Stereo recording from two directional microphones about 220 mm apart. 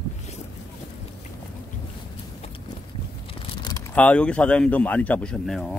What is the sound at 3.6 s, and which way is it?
Vehicle, 20° left (ahead or behind).